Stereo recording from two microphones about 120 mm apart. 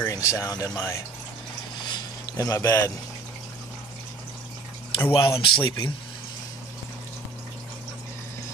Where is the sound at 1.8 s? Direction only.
30° left (ahead or behind).